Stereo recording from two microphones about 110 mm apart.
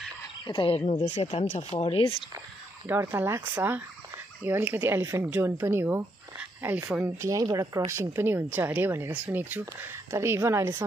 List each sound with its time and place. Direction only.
0.5 s speech: 55° left (ahead or behind)
0.8 s speech: 90° left
1.3 s speech: 80° left; by 2.1 s 60° left (ahead or behind)
2.9 s speech: 20° right (ahead or behind)